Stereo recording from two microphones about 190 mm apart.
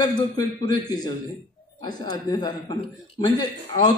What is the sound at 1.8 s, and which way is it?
Speech, 20° left (ahead or behind).